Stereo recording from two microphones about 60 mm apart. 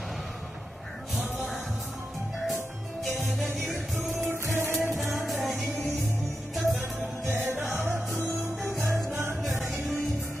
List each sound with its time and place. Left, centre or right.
3.0 s music: centre
4.2 s music: right
4.9 s music: centre
6.5 s music: centre
7.2 s music: right
8.7 s music: centre